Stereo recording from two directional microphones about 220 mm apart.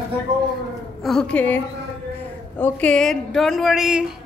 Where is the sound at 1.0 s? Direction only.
Centre (ahead or behind).